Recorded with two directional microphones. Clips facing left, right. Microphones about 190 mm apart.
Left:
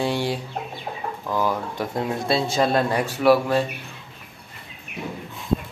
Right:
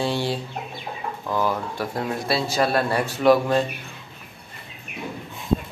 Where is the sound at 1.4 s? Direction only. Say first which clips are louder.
Even; 15° left (ahead or behind).